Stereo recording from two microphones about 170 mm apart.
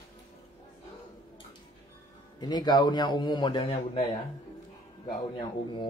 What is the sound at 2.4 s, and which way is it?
A man's voice, 25° left (ahead or behind).